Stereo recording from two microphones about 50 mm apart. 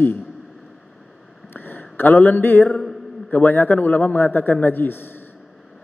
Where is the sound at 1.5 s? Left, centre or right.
Left.